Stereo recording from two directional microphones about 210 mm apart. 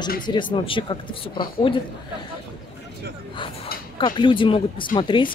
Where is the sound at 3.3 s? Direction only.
25° left (ahead or behind).